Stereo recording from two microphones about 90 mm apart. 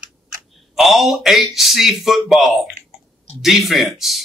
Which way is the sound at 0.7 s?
Centre (ahead or behind).